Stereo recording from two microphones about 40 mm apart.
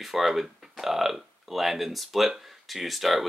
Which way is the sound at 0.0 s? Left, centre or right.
Centre.